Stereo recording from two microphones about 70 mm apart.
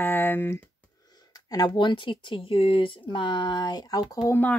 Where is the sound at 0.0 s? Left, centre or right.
Left.